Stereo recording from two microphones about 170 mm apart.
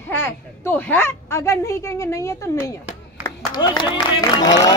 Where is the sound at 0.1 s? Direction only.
10° left (ahead or behind).